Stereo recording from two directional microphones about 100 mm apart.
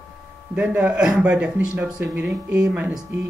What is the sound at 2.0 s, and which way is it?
Speech, 20° right (ahead or behind).